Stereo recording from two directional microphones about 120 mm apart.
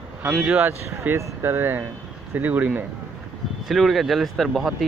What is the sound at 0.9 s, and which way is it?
Speech, 25° right (ahead or behind).